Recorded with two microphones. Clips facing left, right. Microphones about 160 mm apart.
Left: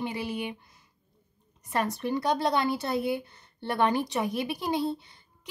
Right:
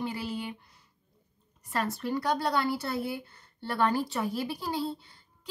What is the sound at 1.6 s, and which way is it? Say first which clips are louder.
Speech: left 2 dB; 20° left (ahead or behind).